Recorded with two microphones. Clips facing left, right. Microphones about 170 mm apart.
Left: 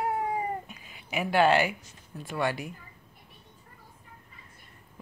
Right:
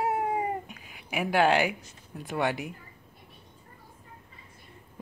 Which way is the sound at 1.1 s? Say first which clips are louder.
Left 1 dB; 15° right (ahead or behind).